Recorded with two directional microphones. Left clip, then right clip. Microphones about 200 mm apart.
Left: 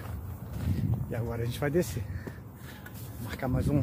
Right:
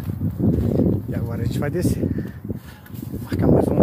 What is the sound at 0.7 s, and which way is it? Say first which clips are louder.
Speech: right 14 dB; 10° right (ahead or behind).